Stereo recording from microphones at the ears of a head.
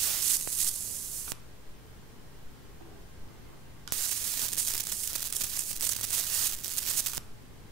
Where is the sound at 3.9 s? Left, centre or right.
Right.